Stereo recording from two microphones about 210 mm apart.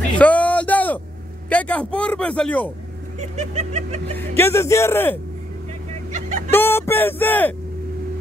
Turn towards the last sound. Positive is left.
turn(degrees=10)  # may be behind; listen again after turning